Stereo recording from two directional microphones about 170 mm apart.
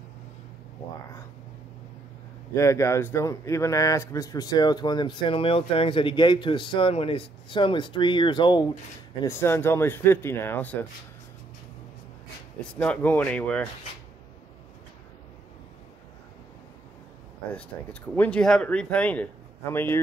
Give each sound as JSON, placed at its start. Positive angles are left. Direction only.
{"t": 2.5, "sound": "speech", "side_deg": 15}
{"t": 9.2, "sound": "a man's voice", "side_deg": 15}
{"t": 12.5, "sound": "a man's voice", "side_deg": 5}
{"t": 17.7, "sound": "a man's voice", "side_deg": 15}